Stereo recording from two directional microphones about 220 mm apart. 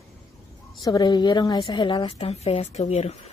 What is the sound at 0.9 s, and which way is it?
Speech, 20° left (ahead or behind).